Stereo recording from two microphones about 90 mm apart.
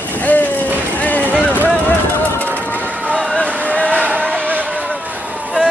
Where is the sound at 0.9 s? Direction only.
15° left (ahead or behind).